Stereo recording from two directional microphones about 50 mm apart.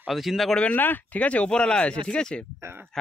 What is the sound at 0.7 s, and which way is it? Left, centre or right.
Speech, left.